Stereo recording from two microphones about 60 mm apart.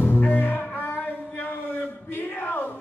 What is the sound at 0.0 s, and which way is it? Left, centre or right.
Music, left.